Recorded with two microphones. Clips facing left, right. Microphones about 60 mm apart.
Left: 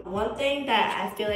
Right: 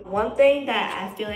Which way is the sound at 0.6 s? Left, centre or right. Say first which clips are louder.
Left 1 dB; centre.